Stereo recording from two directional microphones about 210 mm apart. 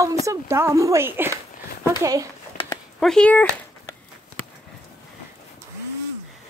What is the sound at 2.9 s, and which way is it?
Speech, 5° left (ahead or behind).